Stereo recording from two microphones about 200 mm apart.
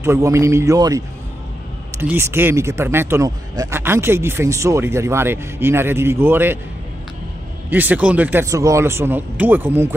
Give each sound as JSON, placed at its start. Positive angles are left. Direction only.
{"t": 0.0, "sound": "speech", "side_deg": -15}
{"t": 7.7, "sound": "speech", "side_deg": -10}